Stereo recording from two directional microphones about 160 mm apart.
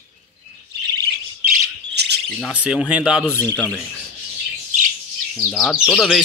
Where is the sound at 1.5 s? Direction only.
90° right.